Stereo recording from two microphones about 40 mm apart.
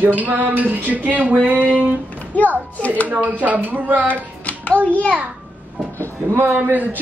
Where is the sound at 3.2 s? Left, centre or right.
Right.